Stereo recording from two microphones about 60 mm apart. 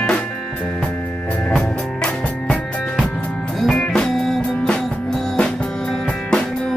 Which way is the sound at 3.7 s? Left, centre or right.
Centre.